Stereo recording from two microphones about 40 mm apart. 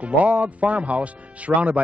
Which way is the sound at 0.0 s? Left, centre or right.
Right.